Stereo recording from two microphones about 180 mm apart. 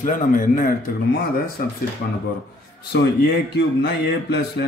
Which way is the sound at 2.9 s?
60° left (ahead or behind).